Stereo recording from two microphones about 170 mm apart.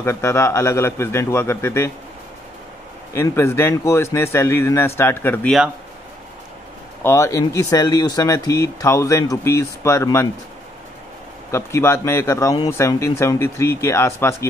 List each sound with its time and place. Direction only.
0.0 s speech: 15° left (ahead or behind)
3.2 s speech: 15° left (ahead or behind)
7.0 s speech: 15° left (ahead or behind)
11.5 s speech: 15° left (ahead or behind)